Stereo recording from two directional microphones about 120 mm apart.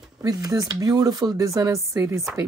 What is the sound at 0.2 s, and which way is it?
Speech, 30° right (ahead or behind).